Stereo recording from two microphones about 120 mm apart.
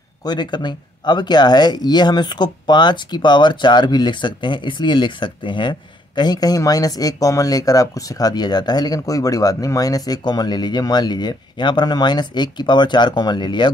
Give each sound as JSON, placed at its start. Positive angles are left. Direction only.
{"t": 0.2, "sound": "speech", "side_deg": 35}